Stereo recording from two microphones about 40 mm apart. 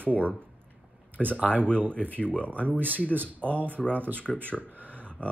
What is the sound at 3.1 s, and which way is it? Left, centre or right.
Speech, right.